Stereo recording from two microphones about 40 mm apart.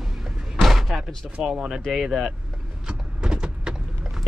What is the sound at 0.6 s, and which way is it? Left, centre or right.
Slam, centre.